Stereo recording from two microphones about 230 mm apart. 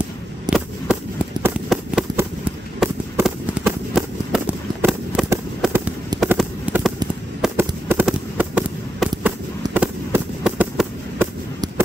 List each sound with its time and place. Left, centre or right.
0.5 s fireworks: centre
1.4 s run: centre
2.8 s fireworks: centre
6.3 s a sound: centre
7.4 s fireworks: centre